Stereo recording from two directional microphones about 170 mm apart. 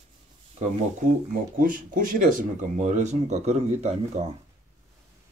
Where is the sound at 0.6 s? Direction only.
45° right (ahead or behind).